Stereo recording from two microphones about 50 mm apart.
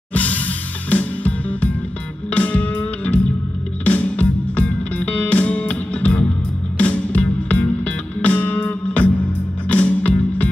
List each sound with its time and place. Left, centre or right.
0.1 s music: left